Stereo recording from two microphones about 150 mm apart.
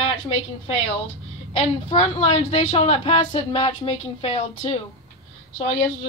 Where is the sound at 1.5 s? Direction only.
45° left (ahead or behind).